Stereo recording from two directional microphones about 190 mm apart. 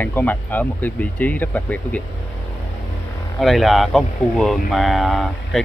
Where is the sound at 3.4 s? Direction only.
Centre (ahead or behind).